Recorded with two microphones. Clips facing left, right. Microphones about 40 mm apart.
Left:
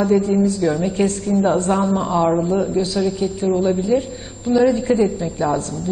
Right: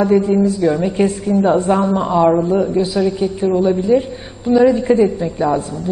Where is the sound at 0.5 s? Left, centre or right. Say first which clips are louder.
Right 3 dB; centre.